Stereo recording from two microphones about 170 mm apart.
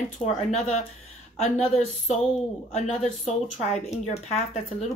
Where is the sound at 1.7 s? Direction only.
40° left (ahead or behind).